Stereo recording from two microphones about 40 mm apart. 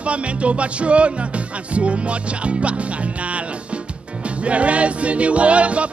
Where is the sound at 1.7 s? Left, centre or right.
Right.